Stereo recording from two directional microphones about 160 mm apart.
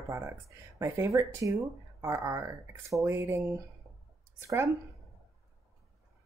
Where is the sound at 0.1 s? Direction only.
20° right (ahead or behind).